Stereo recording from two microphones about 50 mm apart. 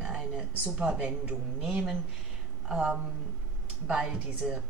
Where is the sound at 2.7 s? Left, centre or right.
Centre.